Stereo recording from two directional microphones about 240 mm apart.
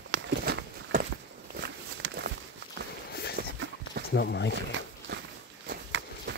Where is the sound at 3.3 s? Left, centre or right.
Right.